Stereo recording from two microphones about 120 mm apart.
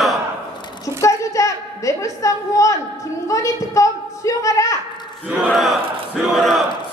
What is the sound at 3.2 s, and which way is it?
A woman's voice, 25° left (ahead or behind).